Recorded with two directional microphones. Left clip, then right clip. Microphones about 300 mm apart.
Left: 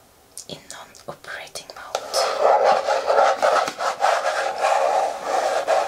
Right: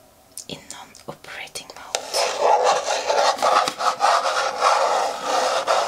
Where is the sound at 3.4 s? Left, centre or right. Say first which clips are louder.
Right 1 dB; centre.